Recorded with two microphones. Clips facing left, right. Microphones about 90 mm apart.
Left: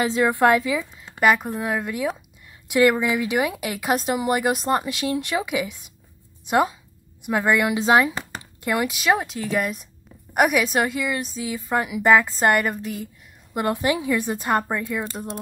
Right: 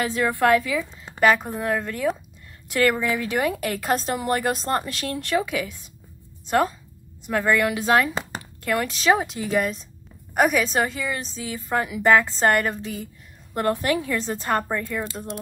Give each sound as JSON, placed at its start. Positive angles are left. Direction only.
{"t": 0.0, "sound": "a woman's voice", "side_deg": 20}
{"t": 1.1, "sound": "a woman's voice", "side_deg": 5}